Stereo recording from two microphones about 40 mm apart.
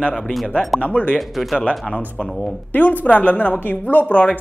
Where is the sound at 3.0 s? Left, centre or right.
Left.